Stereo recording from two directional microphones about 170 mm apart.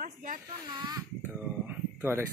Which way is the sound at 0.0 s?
50° right (ahead or behind).